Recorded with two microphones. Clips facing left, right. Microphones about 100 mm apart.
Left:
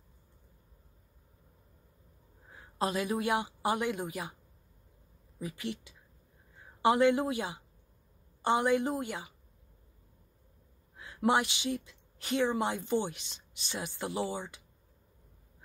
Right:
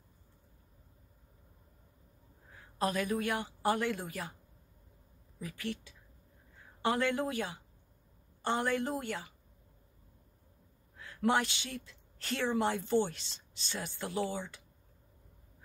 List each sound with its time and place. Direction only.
2.5 s speech: 20° left (ahead or behind)
5.4 s a woman's voice: 20° left (ahead or behind)
11.0 s speech: 20° left (ahead or behind)